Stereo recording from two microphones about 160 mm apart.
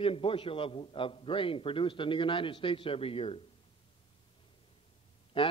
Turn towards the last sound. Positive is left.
turn(degrees=30)  # may be behind; listen again after turning